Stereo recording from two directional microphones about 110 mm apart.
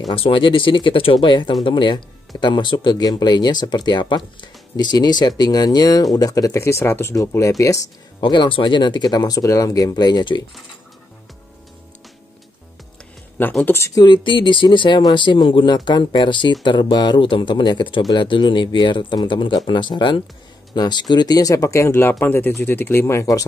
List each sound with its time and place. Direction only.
0.1 s speech: 55° left (ahead or behind); by 7.8 s 30° left (ahead or behind)
8.2 s speech: 45° left (ahead or behind)
13.7 s speech: 25° left (ahead or behind)
14.0 s speech: 45° left (ahead or behind); by 23.4 s 30° left (ahead or behind)